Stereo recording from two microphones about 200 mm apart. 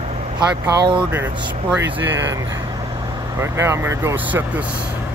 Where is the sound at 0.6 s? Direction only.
25° right (ahead or behind).